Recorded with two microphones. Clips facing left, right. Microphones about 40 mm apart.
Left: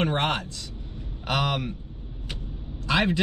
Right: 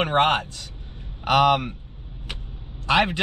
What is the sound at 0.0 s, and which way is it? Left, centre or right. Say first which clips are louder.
Speech: right 5 dB; right.